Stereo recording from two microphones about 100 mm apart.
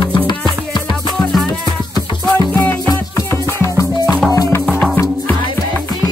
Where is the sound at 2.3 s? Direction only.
20° left (ahead or behind).